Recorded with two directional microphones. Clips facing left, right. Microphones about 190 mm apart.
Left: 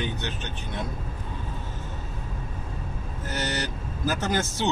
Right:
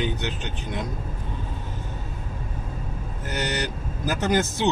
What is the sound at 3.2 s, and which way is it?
Speech, 15° right (ahead or behind).